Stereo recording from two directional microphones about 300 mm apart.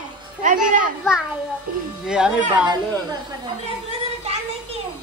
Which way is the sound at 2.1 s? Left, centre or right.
Centre.